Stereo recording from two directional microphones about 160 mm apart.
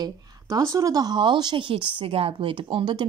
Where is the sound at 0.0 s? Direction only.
20° right (ahead or behind).